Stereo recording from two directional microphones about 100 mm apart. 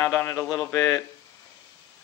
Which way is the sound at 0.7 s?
35° left (ahead or behind).